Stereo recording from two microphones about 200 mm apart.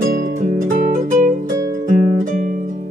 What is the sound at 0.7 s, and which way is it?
Music, 40° right (ahead or behind).